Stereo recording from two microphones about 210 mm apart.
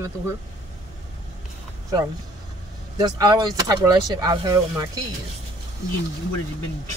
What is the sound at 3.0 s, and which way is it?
Speech, 20° right (ahead or behind).